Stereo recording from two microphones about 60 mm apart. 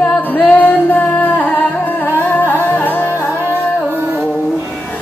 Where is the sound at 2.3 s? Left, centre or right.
Left.